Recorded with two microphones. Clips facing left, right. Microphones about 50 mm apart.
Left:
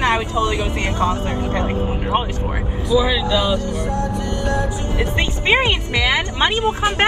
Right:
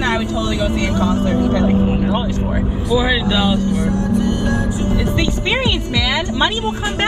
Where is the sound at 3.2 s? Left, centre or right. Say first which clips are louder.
Right 2 dB; right.